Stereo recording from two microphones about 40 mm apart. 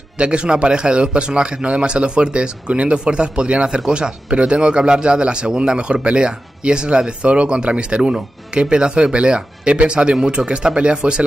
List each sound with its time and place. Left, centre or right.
0.2 s a man's voice: right